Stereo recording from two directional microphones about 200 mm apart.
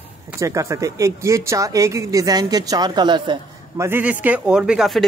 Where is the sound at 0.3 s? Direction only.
15° right (ahead or behind).